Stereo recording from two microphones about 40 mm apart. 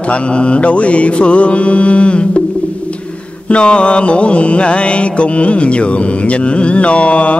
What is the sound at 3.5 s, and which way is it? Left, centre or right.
Mantra, left.